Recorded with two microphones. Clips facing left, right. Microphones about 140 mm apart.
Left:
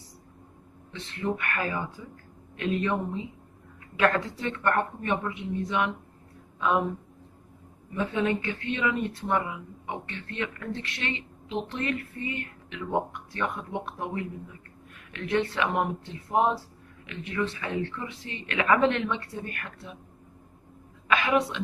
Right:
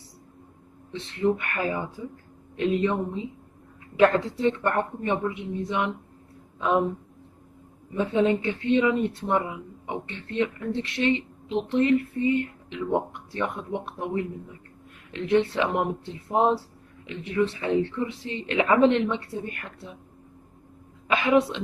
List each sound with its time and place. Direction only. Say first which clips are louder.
0.9 s speech: right 6 dB; 25° right (ahead or behind)
7.9 s speech: right 5 dB; 25° right (ahead or behind)
21.1 s a woman's voice: right 3 dB; 20° right (ahead or behind)